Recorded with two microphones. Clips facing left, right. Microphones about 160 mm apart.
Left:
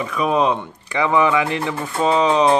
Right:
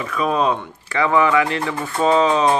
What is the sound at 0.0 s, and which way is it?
Speech, 15° left (ahead or behind).